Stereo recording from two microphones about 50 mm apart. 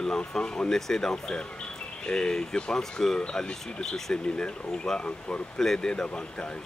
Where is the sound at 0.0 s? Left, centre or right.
Centre.